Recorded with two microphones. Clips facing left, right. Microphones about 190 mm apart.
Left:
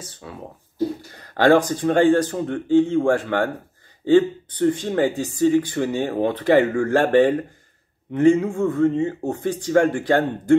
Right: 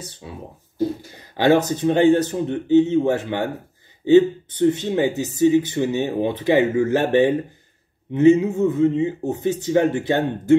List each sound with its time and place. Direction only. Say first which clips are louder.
1.3 s speech: left 1 dB; 20° right (ahead or behind)